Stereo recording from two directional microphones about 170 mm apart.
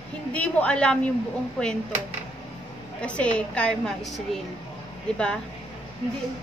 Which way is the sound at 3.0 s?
5° left (ahead or behind).